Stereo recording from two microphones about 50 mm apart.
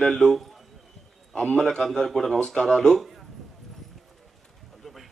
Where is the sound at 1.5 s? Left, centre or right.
Centre.